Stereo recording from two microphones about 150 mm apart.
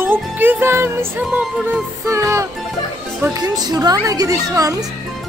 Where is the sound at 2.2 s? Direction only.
20° right (ahead or behind).